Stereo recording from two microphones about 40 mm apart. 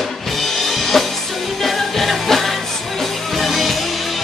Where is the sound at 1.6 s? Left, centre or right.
Centre.